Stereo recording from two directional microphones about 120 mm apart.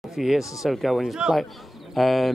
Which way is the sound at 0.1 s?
5° right (ahead or behind).